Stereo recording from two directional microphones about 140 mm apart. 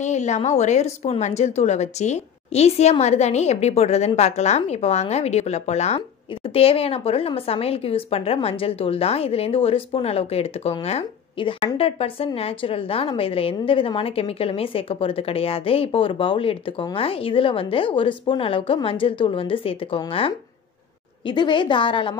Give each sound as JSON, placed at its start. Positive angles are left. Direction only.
{"t": 0.0, "sound": "a woman's voice", "side_deg": 55}